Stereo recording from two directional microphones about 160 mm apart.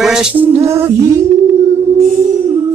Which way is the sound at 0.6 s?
15° right (ahead or behind).